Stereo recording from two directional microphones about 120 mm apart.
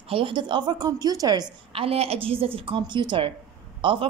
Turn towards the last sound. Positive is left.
turn(degrees=-45)  # may be behind; listen again after turning